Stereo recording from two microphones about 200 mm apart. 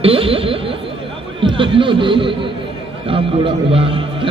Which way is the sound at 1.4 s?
25° right (ahead or behind).